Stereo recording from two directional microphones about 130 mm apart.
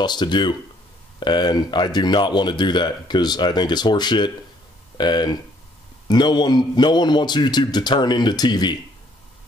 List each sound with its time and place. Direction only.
0.0 s speech: 35° left (ahead or behind)